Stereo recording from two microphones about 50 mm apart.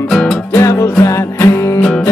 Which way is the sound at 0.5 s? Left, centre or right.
Left.